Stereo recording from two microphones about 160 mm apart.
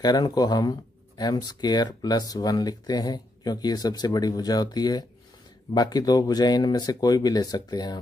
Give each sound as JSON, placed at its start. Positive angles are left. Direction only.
{"t": 0.0, "sound": "speech", "side_deg": 25}